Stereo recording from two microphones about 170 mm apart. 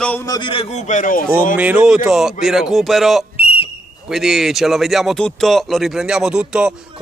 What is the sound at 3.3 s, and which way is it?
Whistle, 35° left (ahead or behind).